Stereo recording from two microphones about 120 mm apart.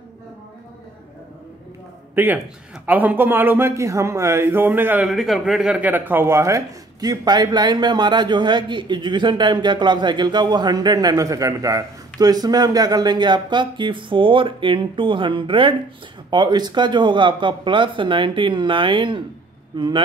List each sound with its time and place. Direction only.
2.1 s a man's voice: 15° right (ahead or behind)
5.0 s speech: centre (ahead or behind); by 19.9 s 40° right (ahead or behind)